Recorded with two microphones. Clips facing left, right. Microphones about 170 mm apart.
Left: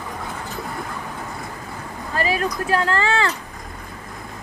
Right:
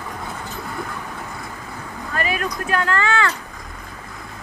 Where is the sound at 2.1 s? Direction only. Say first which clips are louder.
Left 2 dB; 30° left (ahead or behind).